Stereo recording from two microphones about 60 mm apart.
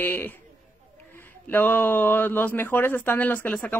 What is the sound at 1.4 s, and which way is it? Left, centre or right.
Speech, left.